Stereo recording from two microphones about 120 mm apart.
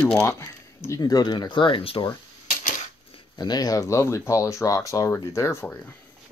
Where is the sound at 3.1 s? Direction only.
35° left (ahead or behind); by 6.0 s 15° left (ahead or behind).